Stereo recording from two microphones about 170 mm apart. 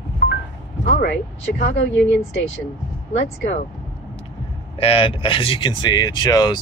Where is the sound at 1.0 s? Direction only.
50° left (ahead or behind).